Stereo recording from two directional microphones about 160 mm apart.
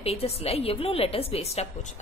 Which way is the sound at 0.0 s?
40° left (ahead or behind).